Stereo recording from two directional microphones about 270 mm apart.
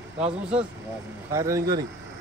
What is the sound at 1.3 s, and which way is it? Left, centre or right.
Speech, centre.